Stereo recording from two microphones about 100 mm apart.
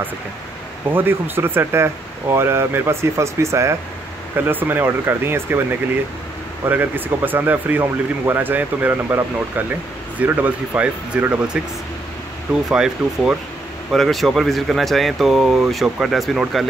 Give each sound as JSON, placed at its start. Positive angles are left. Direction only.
{"t": 0.8, "sound": "speech", "side_deg": -20}
{"t": 6.7, "sound": "speech", "side_deg": -20}
{"t": 12.6, "sound": "speech", "side_deg": -5}